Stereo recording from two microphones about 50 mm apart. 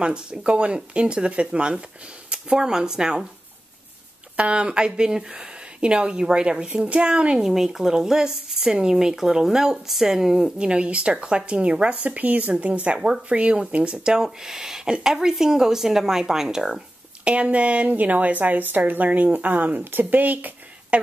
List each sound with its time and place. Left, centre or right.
0.0 s speech: centre
4.4 s speech: right
12.0 s speech: right; by 16.8 s centre
17.2 s a woman's voice: right